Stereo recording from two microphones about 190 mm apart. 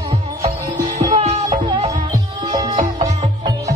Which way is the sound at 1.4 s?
25° right (ahead or behind).